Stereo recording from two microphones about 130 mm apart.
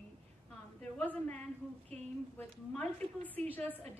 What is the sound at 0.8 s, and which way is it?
A woman's voice, 10° left (ahead or behind).